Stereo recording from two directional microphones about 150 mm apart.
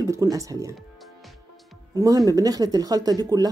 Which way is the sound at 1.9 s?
25° right (ahead or behind).